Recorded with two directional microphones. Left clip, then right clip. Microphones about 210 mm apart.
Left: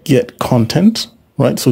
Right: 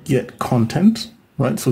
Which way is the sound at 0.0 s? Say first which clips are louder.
Left 7 dB; 40° left (ahead or behind).